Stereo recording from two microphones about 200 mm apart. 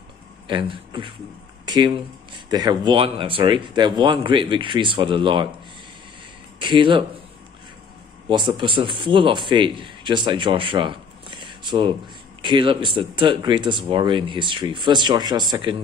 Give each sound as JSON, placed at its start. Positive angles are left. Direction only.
{"t": 0.5, "sound": "speech", "side_deg": -25}
{"t": 1.7, "sound": "a sound", "side_deg": -20}
{"t": 2.5, "sound": "speech", "side_deg": -20}
{"t": 6.6, "sound": "speech", "side_deg": -25}
{"t": 8.3, "sound": "speech", "side_deg": -25}